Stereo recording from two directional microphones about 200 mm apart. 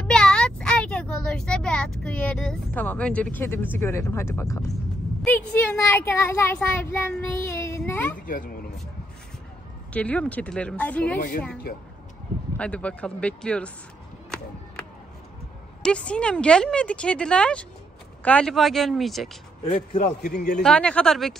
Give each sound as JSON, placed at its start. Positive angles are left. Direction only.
{"t": 0.0, "sound": "a sound", "side_deg": 5}
{"t": 5.2, "sound": "a child's voice", "side_deg": 5}
{"t": 8.3, "sound": "speech", "side_deg": 45}
{"t": 9.9, "sound": "a child's voice", "side_deg": 5}
{"t": 12.5, "sound": "speech", "side_deg": 5}
{"t": 15.8, "sound": "speech", "side_deg": 5}
{"t": 19.6, "sound": "a man's voice", "side_deg": 35}
{"t": 20.2, "sound": "speech", "side_deg": 55}
{"t": 20.6, "sound": "speech", "side_deg": 5}